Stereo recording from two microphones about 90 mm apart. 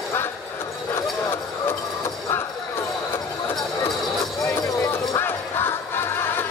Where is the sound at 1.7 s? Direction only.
25° left (ahead or behind).